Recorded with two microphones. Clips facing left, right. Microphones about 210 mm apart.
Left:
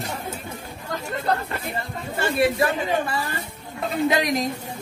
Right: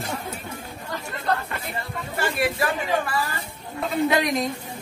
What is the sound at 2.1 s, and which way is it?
Speech, 25° left (ahead or behind).